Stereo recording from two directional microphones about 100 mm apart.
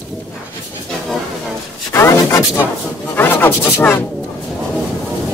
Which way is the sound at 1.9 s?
30° left (ahead or behind).